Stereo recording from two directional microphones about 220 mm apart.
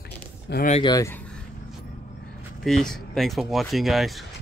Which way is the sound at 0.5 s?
35° left (ahead or behind).